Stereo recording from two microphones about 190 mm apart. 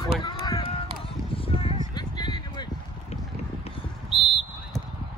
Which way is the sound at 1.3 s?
30° left (ahead or behind).